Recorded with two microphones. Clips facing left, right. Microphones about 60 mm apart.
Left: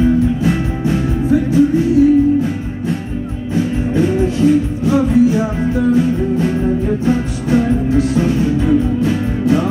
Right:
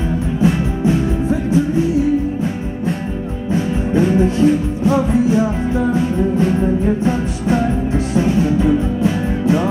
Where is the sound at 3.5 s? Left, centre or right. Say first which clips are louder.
Even; right.